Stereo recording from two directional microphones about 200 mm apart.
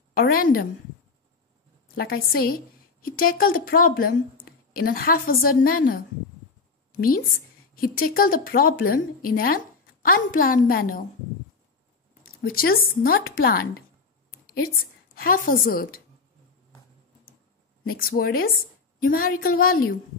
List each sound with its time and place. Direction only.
0.1 s a woman's voice: 45° left (ahead or behind)
2.0 s a woman's voice: 50° left (ahead or behind)
12.4 s a woman's voice: 45° left (ahead or behind)
14.3 s a sound: 50° left (ahead or behind)
15.1 s a woman's voice: 45° left (ahead or behind)
17.9 s a woman's voice: 45° left (ahead or behind)